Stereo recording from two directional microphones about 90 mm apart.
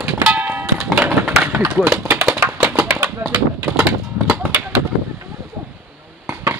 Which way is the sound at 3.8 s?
10° right (ahead or behind).